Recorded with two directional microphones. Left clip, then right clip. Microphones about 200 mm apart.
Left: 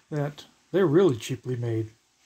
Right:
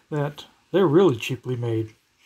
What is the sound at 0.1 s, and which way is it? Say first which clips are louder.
Speech: right 4 dB; 10° right (ahead or behind).